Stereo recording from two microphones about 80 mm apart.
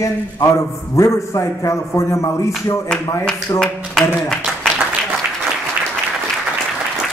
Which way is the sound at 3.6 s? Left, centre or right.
Centre.